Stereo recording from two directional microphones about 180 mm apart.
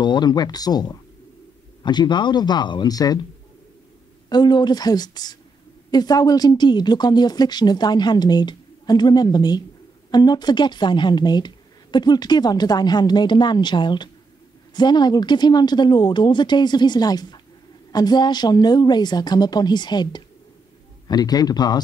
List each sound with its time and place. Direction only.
0.0 s speech: 25° left (ahead or behind)
4.3 s speech: 25° left (ahead or behind)